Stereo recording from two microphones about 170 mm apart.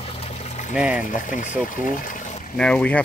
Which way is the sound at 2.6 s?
5° left (ahead or behind).